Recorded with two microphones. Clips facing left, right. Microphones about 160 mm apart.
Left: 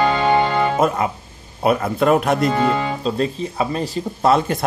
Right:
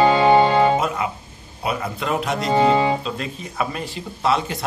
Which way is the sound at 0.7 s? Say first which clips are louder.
Left 4 dB; 45° left (ahead or behind).